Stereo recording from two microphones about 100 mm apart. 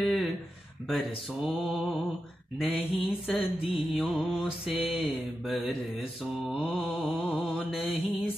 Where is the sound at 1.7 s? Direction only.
Centre (ahead or behind).